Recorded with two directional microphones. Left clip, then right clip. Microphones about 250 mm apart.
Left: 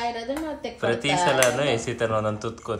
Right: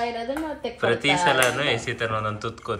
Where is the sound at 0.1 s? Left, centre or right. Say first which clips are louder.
Right 1 dB; centre.